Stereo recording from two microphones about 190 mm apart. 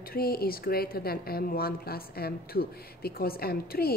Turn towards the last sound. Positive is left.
turn(degrees=55)  # may be behind; listen again after turning